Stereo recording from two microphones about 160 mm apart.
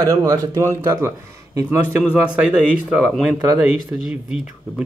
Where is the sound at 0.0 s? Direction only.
20° right (ahead or behind).